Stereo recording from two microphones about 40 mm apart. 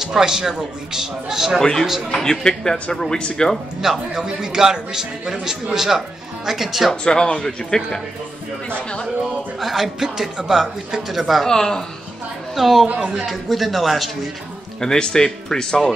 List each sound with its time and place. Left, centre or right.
0.0 s a man's voice: centre
1.6 s speech: centre
3.8 s a man's voice: centre
7.1 s speech: left
7.4 s speech: centre
8.6 s speech: left
9.6 s a man's voice: centre
11.4 s speech: centre
12.5 s a man's voice: centre
12.9 s a man's voice: right
13.2 s a man's voice: centre
14.8 s speech: centre